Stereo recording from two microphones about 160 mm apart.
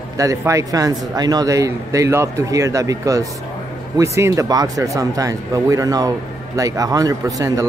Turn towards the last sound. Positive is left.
turn(degrees=-20)  # may be behind; listen again after turning